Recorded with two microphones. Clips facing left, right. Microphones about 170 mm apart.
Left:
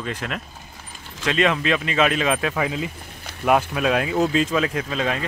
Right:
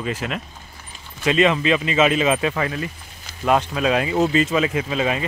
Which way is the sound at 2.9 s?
60° left (ahead or behind).